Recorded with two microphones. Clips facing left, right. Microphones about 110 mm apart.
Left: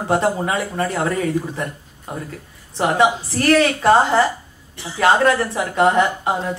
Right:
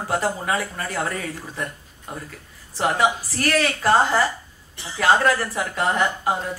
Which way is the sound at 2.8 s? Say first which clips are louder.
Left 4 dB; 25° left (ahead or behind).